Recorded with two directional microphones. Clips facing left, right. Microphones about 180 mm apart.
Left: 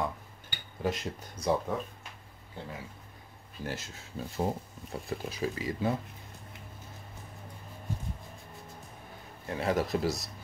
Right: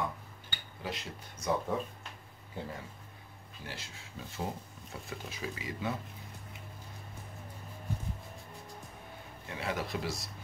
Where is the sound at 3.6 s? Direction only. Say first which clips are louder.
Left 8 dB; 45° left (ahead or behind).